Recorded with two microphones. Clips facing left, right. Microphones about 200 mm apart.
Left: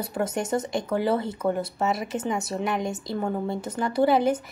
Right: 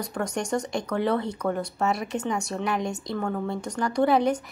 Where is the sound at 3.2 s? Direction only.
20° left (ahead or behind).